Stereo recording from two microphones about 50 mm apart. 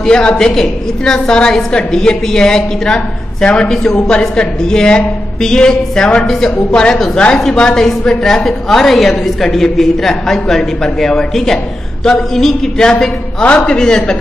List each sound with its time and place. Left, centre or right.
0.0 s a woman's voice: centre
13.4 s a man's voice: left
13.7 s a woman's voice: centre